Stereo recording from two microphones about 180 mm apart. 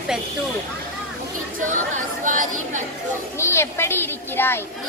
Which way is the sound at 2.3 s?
45° right (ahead or behind).